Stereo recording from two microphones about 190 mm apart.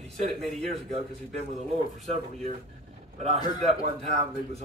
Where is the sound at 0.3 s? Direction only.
Centre (ahead or behind).